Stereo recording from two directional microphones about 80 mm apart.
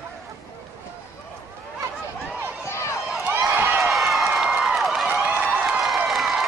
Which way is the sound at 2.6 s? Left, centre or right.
Left.